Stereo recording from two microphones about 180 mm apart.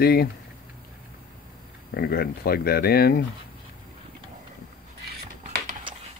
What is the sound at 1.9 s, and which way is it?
Speech, 60° left (ahead or behind).